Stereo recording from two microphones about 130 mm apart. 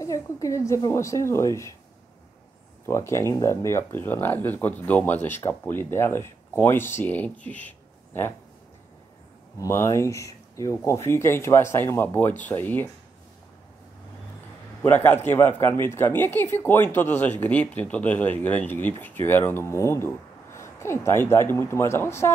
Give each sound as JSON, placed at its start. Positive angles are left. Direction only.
{"t": 0.0, "sound": "speech", "side_deg": 25}
{"t": 2.9, "sound": "speech", "side_deg": 20}
{"t": 9.6, "sound": "speech", "side_deg": 25}
{"t": 14.8, "sound": "speech", "side_deg": 15}